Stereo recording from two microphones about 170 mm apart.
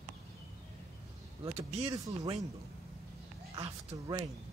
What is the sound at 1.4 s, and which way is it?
Speech, 35° right (ahead or behind).